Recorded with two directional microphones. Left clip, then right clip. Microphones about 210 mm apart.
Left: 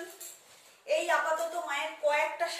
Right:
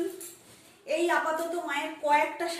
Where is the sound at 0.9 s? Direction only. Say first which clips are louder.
Left 1 dB; centre (ahead or behind).